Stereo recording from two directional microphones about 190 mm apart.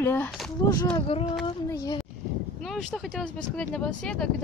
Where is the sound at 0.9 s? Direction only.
30° left (ahead or behind).